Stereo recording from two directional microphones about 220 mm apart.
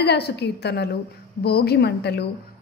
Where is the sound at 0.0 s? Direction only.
50° left (ahead or behind).